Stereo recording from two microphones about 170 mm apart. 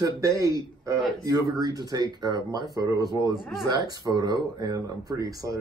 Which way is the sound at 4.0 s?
25° right (ahead or behind).